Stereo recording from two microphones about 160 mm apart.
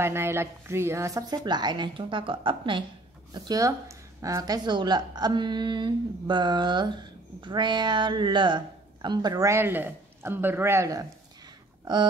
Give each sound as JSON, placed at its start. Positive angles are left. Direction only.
{"t": 0.0, "sound": "a woman's voice", "side_deg": -15}